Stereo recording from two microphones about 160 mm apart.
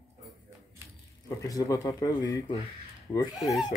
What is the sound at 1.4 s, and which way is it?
Speech, 20° left (ahead or behind).